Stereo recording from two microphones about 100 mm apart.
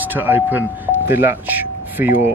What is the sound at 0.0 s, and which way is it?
Speech, 20° right (ahead or behind).